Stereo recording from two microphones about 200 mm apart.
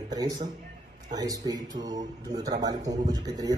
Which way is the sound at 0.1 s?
20° right (ahead or behind).